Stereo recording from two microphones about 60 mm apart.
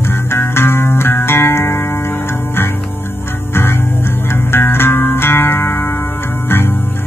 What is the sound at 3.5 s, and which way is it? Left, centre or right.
Music, left.